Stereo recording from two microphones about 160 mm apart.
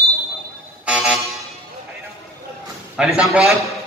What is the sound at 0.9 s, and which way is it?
Vehicle, 5° right (ahead or behind).